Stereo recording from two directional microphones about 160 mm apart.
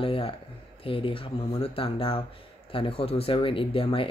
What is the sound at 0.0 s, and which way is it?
Speech, 35° left (ahead or behind).